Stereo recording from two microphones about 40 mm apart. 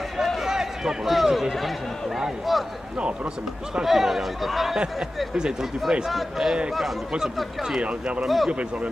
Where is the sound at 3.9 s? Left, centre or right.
Centre.